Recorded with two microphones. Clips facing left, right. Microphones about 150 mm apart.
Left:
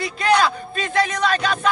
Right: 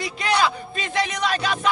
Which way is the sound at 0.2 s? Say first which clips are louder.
Left 4 dB; 50° left (ahead or behind).